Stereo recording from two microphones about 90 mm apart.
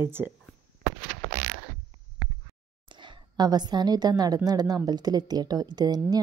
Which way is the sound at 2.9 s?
60° right (ahead or behind).